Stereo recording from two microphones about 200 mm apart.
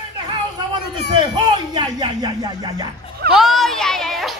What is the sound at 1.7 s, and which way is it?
Speech, 20° right (ahead or behind).